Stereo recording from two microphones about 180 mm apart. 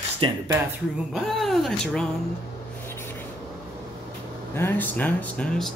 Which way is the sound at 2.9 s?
15° left (ahead or behind).